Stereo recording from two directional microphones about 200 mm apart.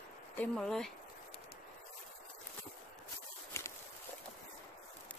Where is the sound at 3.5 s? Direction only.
15° left (ahead or behind).